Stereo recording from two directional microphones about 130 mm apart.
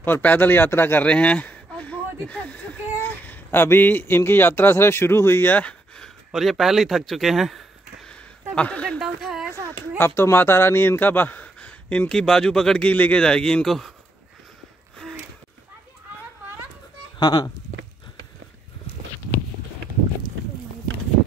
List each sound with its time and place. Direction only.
0.0 s a man's voice: 15° left (ahead or behind)
9.0 s a woman's voice: 5° right (ahead or behind)
9.7 s speech: 20° left (ahead or behind); by 13.9 s centre (ahead or behind)
17.2 s speech: 30° left (ahead or behind)